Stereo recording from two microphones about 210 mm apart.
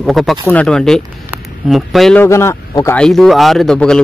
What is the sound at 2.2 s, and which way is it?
Speech, 15° left (ahead or behind).